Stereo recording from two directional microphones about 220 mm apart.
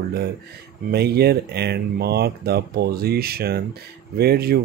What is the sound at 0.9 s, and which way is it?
Speech, 45° right (ahead or behind).